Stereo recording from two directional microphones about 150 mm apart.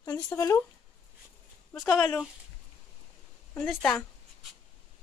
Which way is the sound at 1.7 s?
5° left (ahead or behind).